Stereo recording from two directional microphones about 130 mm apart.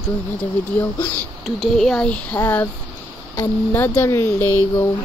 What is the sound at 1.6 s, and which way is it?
Speech, centre (ahead or behind).